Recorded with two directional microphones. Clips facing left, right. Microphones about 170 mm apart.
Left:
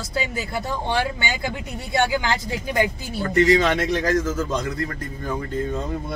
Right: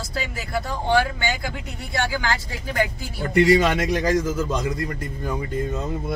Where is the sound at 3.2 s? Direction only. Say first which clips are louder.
Right 1 dB; 10° right (ahead or behind).